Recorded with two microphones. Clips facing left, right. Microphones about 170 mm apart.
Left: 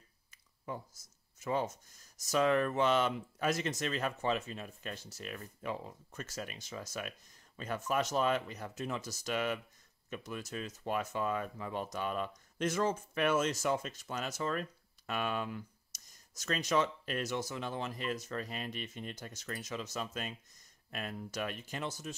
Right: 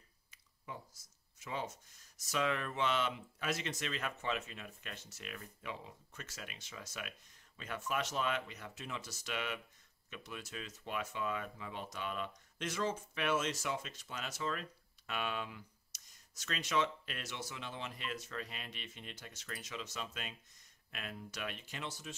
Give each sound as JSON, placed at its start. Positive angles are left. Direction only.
{"t": 1.4, "sound": "speech", "side_deg": 45}